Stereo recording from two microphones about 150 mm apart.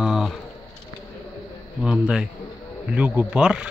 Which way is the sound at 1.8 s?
5° right (ahead or behind).